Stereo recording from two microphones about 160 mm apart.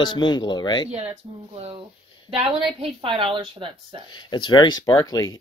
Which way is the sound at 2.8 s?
30° right (ahead or behind).